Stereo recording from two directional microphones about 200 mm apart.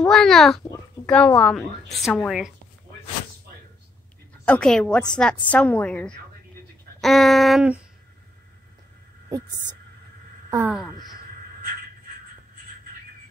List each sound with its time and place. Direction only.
0.1 s a woman's voice: centre (ahead or behind)
4.5 s a woman's voice: 5° left (ahead or behind)
7.0 s a sound: centre (ahead or behind)
9.3 s speech: 20° right (ahead or behind)